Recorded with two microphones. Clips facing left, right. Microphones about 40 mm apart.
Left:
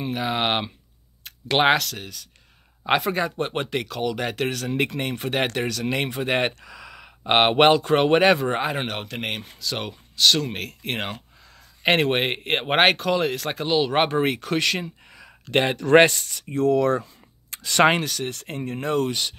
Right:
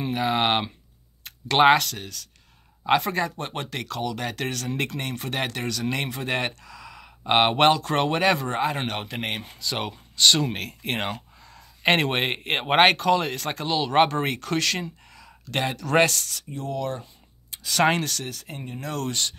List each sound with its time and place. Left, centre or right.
0.0 s speech: centre
15.6 s speech: left
16.1 s speech: centre
17.8 s speech: centre
18.5 s speech: left
18.9 s speech: centre